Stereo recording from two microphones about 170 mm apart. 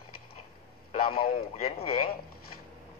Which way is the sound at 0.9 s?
60° left (ahead or behind).